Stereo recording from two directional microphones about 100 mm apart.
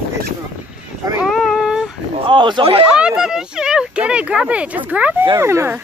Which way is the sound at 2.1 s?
60° right (ahead or behind).